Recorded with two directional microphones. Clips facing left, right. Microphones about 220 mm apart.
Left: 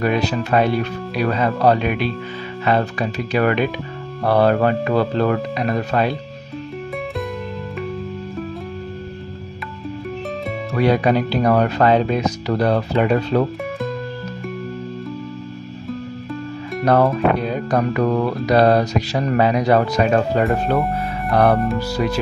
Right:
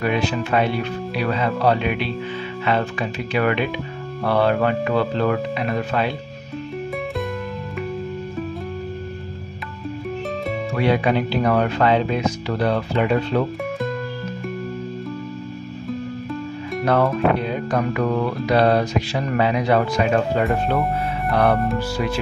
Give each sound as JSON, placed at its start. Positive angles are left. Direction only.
{"t": 0.0, "sound": "speech", "side_deg": 40}
{"t": 10.8, "sound": "speech", "side_deg": 40}
{"t": 16.8, "sound": "speech", "side_deg": 40}
{"t": 21.3, "sound": "music", "side_deg": 45}
{"t": 21.7, "sound": "speech", "side_deg": 40}